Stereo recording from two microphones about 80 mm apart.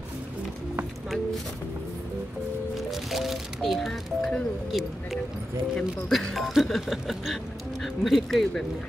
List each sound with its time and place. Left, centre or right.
2.9 s speech: centre